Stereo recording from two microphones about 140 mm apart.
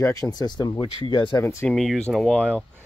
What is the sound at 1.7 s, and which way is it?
Speech, 5° left (ahead or behind).